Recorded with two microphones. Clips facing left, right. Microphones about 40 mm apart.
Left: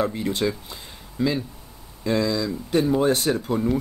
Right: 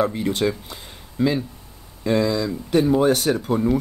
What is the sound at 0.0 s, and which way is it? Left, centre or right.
Speech, centre.